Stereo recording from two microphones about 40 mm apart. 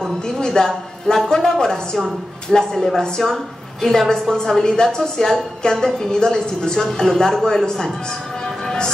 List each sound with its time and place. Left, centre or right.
0.4 s a woman's voice: centre
1.0 s a sound: centre
2.5 s a woman's voice: centre
8.6 s music: centre